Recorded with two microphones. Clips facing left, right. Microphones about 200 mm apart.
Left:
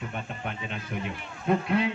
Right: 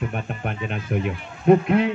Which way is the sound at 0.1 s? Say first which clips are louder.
Right 6 dB; 55° right (ahead or behind).